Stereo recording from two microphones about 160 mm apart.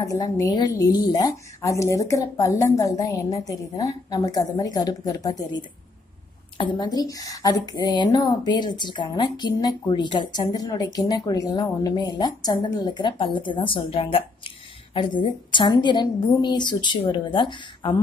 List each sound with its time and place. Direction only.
0.0 s speech: 20° left (ahead or behind)
6.6 s speech: 25° left (ahead or behind)